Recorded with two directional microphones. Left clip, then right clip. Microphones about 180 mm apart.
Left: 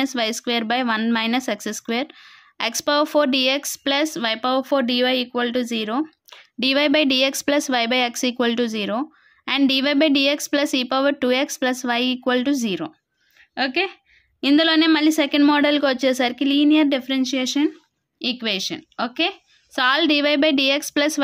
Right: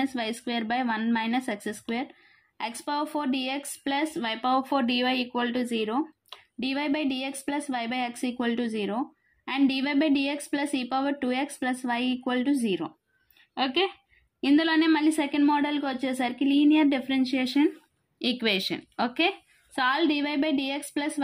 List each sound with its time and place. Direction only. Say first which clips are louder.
0.0 s speech: left 7 dB; 35° left (ahead or behind)
14.4 s speech: left 6 dB; 35° left (ahead or behind)
18.2 s speech: left 3 dB; 10° left (ahead or behind)
19.7 s speech: left 7 dB; 35° left (ahead or behind)